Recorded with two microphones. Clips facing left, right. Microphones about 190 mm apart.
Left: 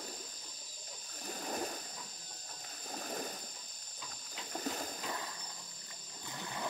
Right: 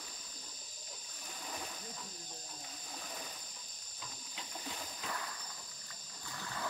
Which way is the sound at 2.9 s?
50° left (ahead or behind).